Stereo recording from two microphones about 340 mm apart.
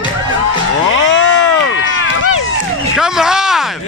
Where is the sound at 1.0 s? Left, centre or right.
Left.